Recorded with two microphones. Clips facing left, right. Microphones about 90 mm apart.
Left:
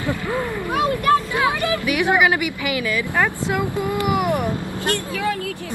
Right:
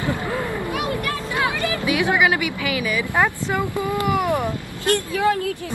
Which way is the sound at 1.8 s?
20° right (ahead or behind).